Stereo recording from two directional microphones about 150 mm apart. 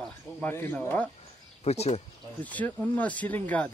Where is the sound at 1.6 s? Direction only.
45° left (ahead or behind).